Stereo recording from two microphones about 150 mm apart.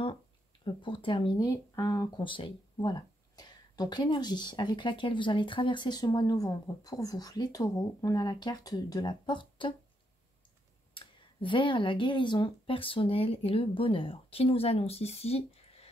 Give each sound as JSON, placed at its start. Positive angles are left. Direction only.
{"t": 0.7, "sound": "speech", "side_deg": 30}
{"t": 11.0, "sound": "speech", "side_deg": 35}